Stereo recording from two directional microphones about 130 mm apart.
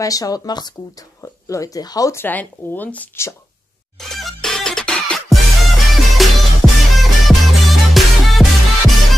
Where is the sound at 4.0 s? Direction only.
5° left (ahead or behind).